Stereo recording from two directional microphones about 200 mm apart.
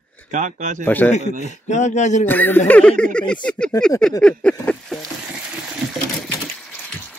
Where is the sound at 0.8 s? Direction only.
10° left (ahead or behind).